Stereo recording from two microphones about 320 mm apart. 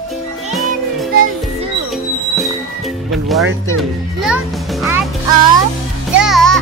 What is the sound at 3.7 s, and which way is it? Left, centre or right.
A child's voice, centre.